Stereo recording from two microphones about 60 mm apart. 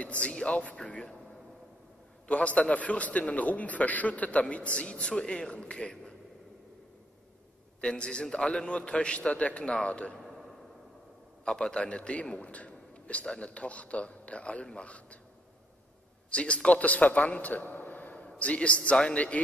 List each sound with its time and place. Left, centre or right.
0.0 s a man's voice: left
2.2 s a man's voice: left
7.8 s a man's voice: centre
11.4 s a man's voice: centre
16.3 s a man's voice: centre